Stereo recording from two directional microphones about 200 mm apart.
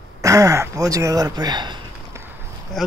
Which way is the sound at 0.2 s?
15° right (ahead or behind).